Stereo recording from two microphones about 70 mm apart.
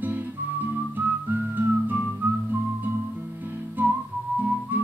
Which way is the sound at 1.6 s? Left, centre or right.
Right.